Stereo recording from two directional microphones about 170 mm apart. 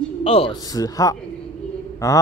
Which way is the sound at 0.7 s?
20° left (ahead or behind).